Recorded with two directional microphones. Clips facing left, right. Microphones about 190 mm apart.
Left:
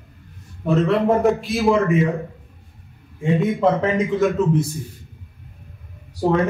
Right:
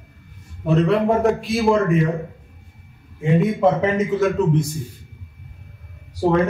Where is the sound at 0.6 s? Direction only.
Centre (ahead or behind).